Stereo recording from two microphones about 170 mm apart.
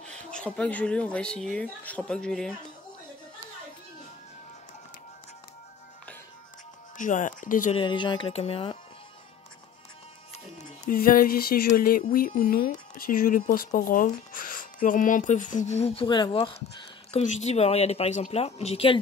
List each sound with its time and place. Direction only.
0.0 s speech: 5° left (ahead or behind)
7.0 s speech: 50° left (ahead or behind)
7.7 s speech: 30° left (ahead or behind)
10.9 s speech: 55° left (ahead or behind); by 16.5 s 30° left (ahead or behind)
17.1 s speech: 40° left (ahead or behind)